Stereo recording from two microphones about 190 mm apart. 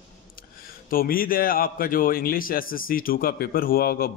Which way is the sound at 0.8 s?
50° left (ahead or behind).